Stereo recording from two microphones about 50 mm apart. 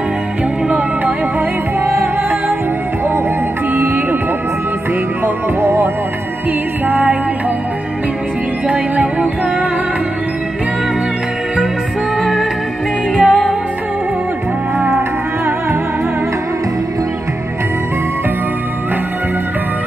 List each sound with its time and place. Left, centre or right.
0.7 s music: right
3.7 s music: right
5.2 s music: right
6.9 s music: right
8.9 s music: right
12.2 s music: centre